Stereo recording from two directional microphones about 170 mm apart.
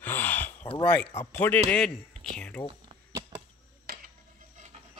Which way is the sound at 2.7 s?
30° right (ahead or behind).